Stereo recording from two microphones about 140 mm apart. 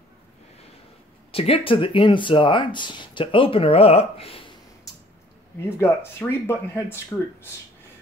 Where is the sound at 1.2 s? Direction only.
45° left (ahead or behind).